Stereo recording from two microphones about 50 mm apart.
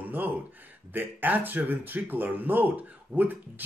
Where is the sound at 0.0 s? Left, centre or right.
Right.